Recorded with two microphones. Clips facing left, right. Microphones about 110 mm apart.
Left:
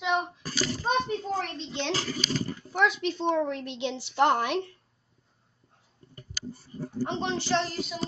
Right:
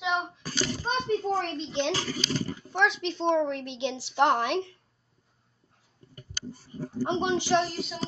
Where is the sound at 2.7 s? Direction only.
Centre (ahead or behind).